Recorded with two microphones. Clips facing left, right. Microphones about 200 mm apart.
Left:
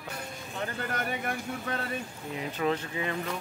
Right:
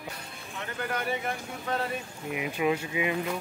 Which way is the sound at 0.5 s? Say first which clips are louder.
Even; 50° left (ahead or behind).